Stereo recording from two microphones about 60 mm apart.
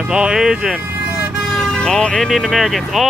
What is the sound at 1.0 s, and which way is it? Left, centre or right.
Vehicle, centre.